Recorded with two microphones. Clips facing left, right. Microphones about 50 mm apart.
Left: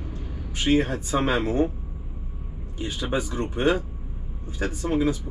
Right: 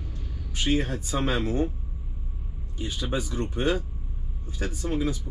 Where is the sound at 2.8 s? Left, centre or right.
Left.